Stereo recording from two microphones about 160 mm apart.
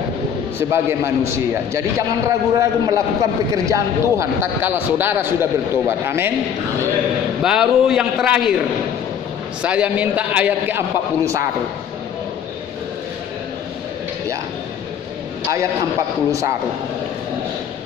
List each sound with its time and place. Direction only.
0.6 s a man's voice: 15° right (ahead or behind)
7.4 s a man's voice: 5° right (ahead or behind)
9.6 s a man's voice: 5° right (ahead or behind)
16.3 s a man's voice: 20° right (ahead or behind)